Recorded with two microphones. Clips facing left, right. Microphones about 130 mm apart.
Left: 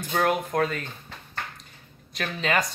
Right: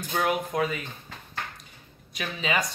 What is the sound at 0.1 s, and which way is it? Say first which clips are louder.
Speech: left 2 dB; 5° right (ahead or behind).